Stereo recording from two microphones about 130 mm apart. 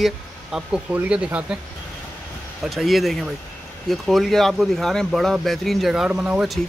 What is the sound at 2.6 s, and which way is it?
Speech, centre (ahead or behind).